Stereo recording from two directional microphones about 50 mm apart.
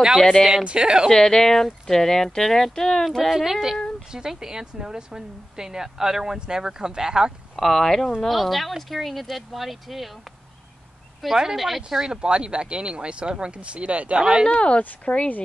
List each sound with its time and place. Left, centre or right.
0.2 s speech: centre
0.7 s speech: centre
1.1 s speech: centre
7.6 s speech: centre
11.1 s speech: centre
12.1 s speech: centre
14.5 s speech: left